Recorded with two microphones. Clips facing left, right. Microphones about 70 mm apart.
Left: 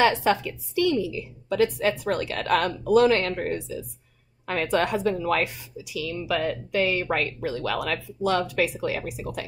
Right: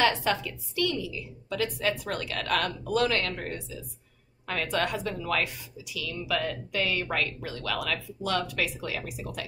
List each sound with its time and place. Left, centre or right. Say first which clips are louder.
0.0 s speech: left 5 dB; left